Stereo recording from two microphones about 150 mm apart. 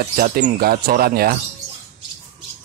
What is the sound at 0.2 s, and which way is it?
Speech, 90° right.